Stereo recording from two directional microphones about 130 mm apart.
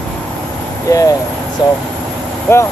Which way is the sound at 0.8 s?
25° left (ahead or behind).